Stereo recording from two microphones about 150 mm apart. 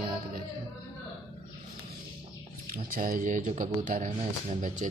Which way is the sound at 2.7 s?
75° right (ahead or behind).